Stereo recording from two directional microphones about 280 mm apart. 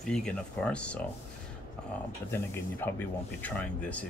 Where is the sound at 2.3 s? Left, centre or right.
Centre.